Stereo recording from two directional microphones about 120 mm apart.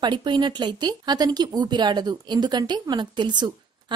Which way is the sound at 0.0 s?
35° right (ahead or behind).